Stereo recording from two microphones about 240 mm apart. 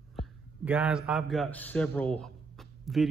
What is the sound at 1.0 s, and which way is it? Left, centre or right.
A man's voice, centre.